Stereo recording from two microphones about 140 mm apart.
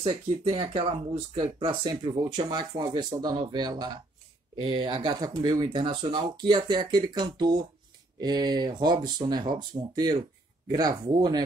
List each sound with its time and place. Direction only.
0.5 s speech: 40° right (ahead or behind)